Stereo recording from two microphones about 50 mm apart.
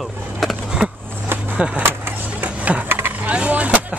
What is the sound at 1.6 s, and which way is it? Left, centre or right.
Speech, right.